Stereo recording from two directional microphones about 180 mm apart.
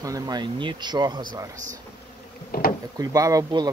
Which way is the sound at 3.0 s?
20° right (ahead or behind).